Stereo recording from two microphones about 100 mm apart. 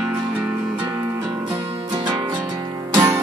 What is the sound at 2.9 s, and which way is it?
Music, 35° right (ahead or behind).